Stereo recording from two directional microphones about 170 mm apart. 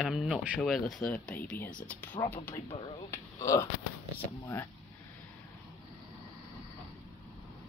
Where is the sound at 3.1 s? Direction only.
15° left (ahead or behind).